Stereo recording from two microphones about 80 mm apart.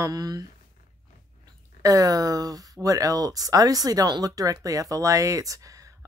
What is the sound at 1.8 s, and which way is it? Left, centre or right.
Speech, right.